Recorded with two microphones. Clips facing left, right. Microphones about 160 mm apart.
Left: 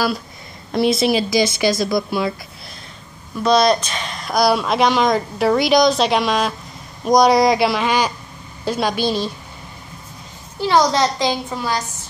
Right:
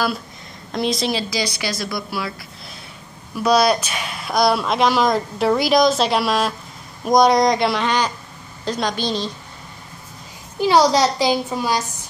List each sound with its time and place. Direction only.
0.7 s speech: 5° left (ahead or behind)
1.6 s speech: 25° left (ahead or behind)
3.3 s a woman's voice: 5° right (ahead or behind); by 9.3 s 10° left (ahead or behind)
10.6 s a child's voice: 10° right (ahead or behind)